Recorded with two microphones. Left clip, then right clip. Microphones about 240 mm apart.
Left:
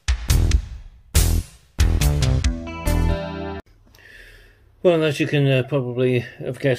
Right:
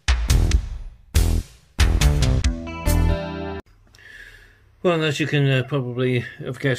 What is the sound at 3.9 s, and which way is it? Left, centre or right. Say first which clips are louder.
Speech: right 2 dB; centre.